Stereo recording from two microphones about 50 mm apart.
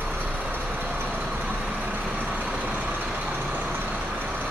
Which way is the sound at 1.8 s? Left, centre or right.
Right.